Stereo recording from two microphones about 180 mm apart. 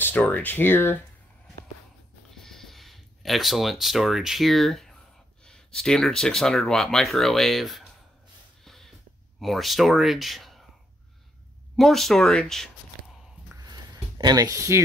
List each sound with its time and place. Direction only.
0.0 s speech: 10° left (ahead or behind)
2.3 s speech: centre (ahead or behind)
8.6 s a sound: centre (ahead or behind)
9.4 s speech: centre (ahead or behind)
11.7 s speech: centre (ahead or behind)
13.7 s a sound: 20° right (ahead or behind)